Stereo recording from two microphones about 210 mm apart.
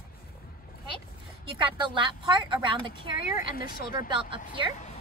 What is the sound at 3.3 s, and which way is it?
Speech, 45° left (ahead or behind).